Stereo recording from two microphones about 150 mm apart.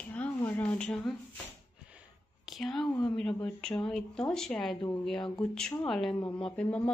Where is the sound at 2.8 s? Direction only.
30° left (ahead or behind).